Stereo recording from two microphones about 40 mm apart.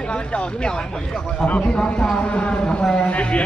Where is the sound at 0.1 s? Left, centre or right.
Left.